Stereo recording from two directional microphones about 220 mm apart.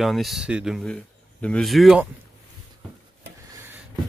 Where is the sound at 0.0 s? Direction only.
Centre (ahead or behind).